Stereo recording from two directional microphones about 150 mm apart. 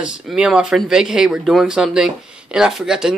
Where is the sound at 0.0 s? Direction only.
5° right (ahead or behind).